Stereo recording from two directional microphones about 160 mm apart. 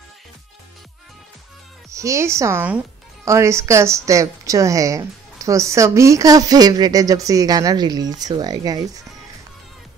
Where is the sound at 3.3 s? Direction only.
15° right (ahead or behind).